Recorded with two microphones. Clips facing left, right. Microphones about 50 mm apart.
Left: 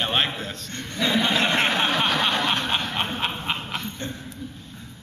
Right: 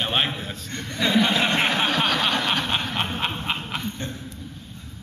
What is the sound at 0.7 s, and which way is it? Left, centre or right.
Chuckle, right.